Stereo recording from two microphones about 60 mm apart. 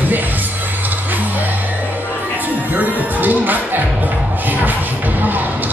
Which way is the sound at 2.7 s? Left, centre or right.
Right.